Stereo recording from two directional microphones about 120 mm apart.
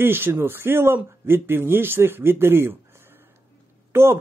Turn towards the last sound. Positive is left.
turn(degrees=-20)  # may be behind; listen again after turning